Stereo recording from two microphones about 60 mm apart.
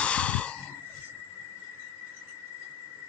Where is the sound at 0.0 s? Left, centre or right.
Centre.